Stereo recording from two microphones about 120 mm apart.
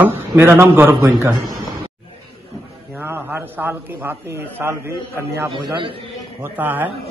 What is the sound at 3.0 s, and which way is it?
A man's voice, 15° right (ahead or behind).